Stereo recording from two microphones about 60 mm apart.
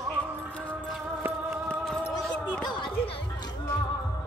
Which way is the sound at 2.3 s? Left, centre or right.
Centre.